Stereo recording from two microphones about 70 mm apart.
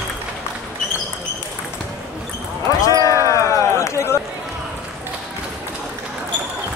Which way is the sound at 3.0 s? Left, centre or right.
Left.